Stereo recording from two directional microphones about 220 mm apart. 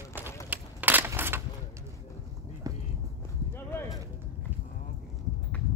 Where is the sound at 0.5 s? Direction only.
10° right (ahead or behind).